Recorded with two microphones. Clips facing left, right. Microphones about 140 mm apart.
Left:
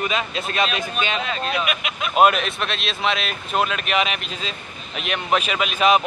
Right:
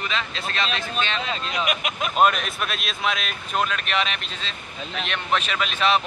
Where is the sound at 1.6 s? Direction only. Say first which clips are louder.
Even; 40° right (ahead or behind).